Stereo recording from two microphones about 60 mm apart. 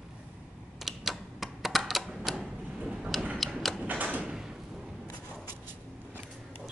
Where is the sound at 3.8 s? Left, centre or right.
Right.